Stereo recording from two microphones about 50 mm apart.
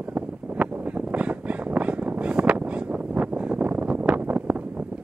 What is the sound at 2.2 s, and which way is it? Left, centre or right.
Wind noise, right.